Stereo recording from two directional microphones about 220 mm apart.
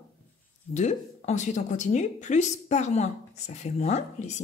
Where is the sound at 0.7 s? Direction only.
30° left (ahead or behind).